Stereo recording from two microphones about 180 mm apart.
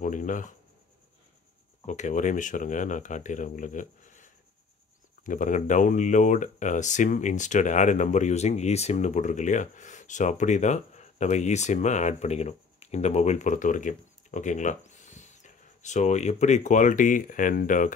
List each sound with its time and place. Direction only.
0.0 s speech: 45° left (ahead or behind)
1.9 s speech: 45° left (ahead or behind)